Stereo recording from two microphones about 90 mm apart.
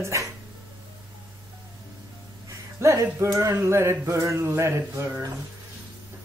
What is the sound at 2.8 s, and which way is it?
Speech, 30° right (ahead or behind).